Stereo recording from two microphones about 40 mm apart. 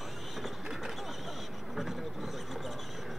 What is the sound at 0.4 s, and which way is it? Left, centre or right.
Mechanisms, centre.